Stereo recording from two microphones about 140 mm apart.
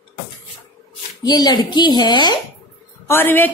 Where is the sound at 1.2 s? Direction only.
30° left (ahead or behind).